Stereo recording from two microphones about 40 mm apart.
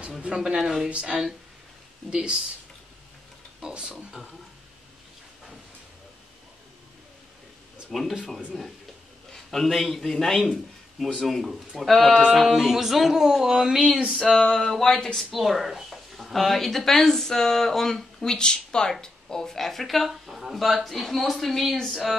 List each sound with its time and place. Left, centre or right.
0.2 s speech: right
3.6 s speech: right
7.9 s speech: centre
8.5 s a man's voice: centre
14.4 s a sound: centre
15.1 s speech: centre